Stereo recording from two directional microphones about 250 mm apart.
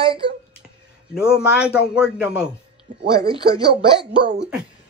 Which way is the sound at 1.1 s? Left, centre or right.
Centre.